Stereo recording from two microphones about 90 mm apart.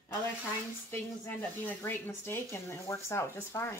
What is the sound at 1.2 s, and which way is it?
Speech, 20° left (ahead or behind).